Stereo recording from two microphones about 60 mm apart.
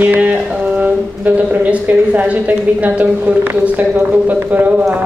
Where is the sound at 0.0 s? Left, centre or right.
Right.